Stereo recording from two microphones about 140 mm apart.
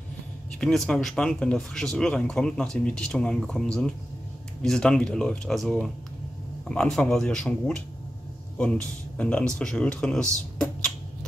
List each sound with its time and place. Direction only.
0.6 s speech: 5° left (ahead or behind)